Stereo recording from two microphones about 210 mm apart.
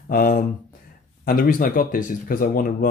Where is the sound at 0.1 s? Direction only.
45° left (ahead or behind).